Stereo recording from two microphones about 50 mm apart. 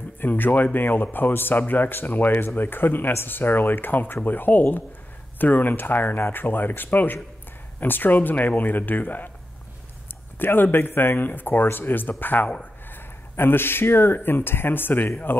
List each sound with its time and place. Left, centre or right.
0.2 s speech: left
10.4 s speech: left